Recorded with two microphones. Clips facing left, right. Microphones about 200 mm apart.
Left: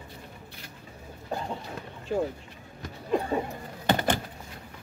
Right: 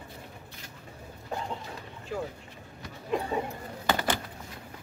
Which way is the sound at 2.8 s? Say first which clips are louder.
Left 3 dB; 40° left (ahead or behind).